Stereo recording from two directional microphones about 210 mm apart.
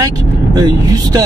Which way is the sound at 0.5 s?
20° right (ahead or behind).